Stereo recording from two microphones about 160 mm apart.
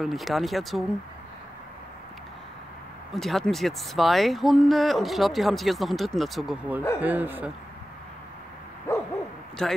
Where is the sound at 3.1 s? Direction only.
Centre (ahead or behind).